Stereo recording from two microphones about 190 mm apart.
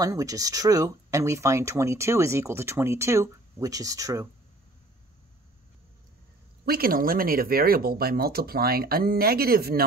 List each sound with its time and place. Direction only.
0.0 s speech: 20° right (ahead or behind)
6.6 s speech: 50° right (ahead or behind)